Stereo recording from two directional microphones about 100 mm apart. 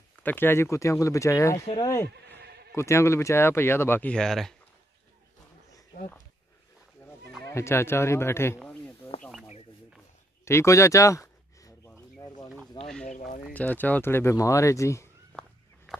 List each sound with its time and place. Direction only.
0.2 s speech: 20° left (ahead or behind)
4.1 s speech: 5° left (ahead or behind)
7.4 s speech: 25° left (ahead or behind)
8.5 s snake: 10° left (ahead or behind)
10.4 s a sound: 30° left (ahead or behind)
12.8 s a sound: 5° left (ahead or behind)
13.4 s speech: 15° left (ahead or behind)
15.3 s walk: 20° left (ahead or behind)
15.9 s a sound: 5° right (ahead or behind)